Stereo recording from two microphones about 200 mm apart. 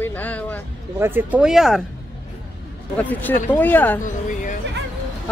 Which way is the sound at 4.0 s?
40° left (ahead or behind).